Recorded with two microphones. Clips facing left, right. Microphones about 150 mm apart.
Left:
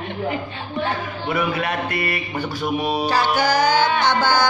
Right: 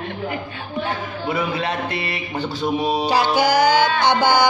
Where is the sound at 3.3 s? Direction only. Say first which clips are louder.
Right 3 dB; 10° right (ahead or behind).